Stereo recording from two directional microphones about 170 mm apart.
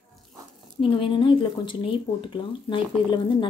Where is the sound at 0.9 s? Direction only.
30° left (ahead or behind).